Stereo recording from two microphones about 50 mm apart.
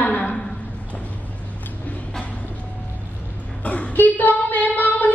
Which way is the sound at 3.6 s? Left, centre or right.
Left.